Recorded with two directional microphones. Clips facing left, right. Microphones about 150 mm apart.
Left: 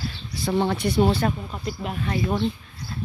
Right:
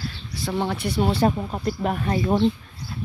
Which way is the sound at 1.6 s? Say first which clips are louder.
Right 6 dB; 45° right (ahead or behind).